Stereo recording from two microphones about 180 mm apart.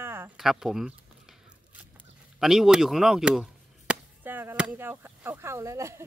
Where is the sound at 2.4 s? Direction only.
Centre (ahead or behind).